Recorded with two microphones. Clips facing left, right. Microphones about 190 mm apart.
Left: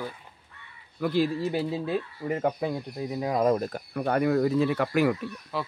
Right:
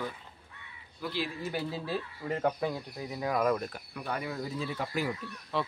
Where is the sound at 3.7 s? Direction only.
45° left (ahead or behind); by 5.1 s 70° left (ahead or behind).